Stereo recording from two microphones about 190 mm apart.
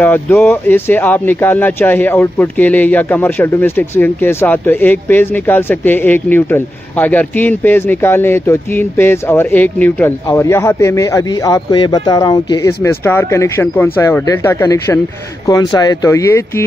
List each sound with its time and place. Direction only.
0.0 s speech: 10° left (ahead or behind)